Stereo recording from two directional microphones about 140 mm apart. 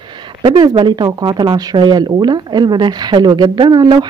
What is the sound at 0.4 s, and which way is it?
Speech, 35° right (ahead or behind).